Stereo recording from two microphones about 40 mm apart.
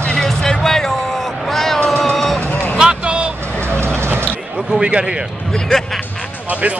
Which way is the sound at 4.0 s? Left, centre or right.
Right.